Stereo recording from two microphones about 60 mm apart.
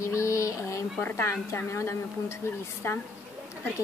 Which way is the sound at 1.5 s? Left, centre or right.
Left.